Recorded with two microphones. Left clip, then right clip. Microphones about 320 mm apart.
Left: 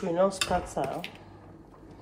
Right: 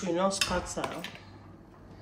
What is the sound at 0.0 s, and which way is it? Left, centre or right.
Speech, centre.